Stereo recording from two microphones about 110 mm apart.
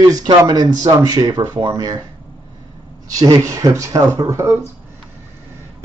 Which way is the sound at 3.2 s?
30° right (ahead or behind).